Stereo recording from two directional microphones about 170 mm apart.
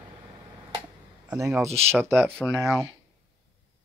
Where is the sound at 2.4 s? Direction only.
10° left (ahead or behind).